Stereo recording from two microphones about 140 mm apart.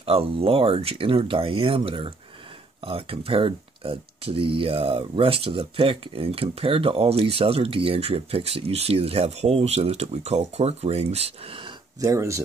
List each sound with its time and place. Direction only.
0.0 s speech: 45° right (ahead or behind)
12.0 s speech: 20° right (ahead or behind)